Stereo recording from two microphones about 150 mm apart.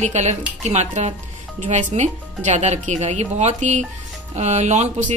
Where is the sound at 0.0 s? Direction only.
50° right (ahead or behind).